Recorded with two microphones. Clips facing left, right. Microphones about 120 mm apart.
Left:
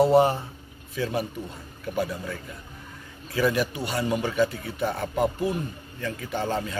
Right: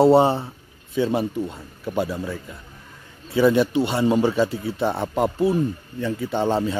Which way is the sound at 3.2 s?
25° right (ahead or behind).